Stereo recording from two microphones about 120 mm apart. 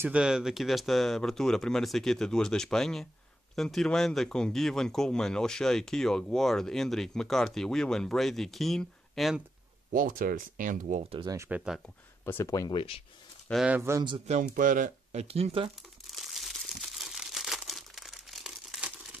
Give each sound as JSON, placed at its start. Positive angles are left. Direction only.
{"t": 0.0, "sound": "speech", "side_deg": -10}
{"t": 10.6, "sound": "speech", "side_deg": -90}
{"t": 11.2, "sound": "speech", "side_deg": -25}
{"t": 11.5, "sound": "speech", "side_deg": -5}
{"t": 12.3, "sound": "speech", "side_deg": 25}
{"t": 12.7, "sound": "speech", "side_deg": 50}
{"t": 13.7, "sound": "a man's voice", "side_deg": -15}
{"t": 14.2, "sound": "speech", "side_deg": -80}
{"t": 15.2, "sound": "speech", "side_deg": -55}
{"t": 16.1, "sound": "crumpling", "side_deg": 0}